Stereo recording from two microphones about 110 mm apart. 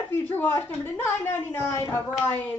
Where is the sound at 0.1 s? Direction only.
20° left (ahead or behind).